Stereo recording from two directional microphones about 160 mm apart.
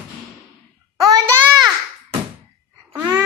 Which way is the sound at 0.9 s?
20° right (ahead or behind).